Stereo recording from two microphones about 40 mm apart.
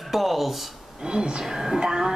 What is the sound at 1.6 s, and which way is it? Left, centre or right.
Speech, centre.